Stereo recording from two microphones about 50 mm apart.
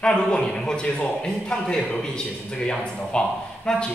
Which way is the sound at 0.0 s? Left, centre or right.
Centre.